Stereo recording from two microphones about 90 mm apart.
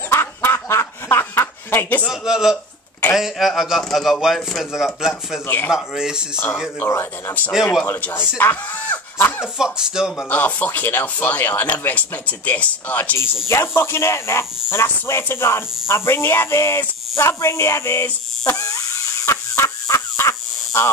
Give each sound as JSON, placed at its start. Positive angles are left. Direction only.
{"t": 0.1, "sound": "snicker", "side_deg": 30}
{"t": 2.0, "sound": "a man's voice", "side_deg": -5}
{"t": 2.5, "sound": "a sound", "side_deg": 25}
{"t": 3.2, "sound": "a man's voice", "side_deg": -5}
{"t": 6.3, "sound": "speech", "side_deg": 25}
{"t": 9.6, "sound": "speech", "side_deg": -5}
{"t": 10.3, "sound": "speech", "side_deg": 20}
{"t": 18.5, "sound": "fowl", "side_deg": 40}